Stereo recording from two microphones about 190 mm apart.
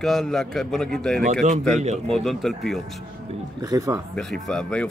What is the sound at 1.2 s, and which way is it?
Speech, 40° right (ahead or behind).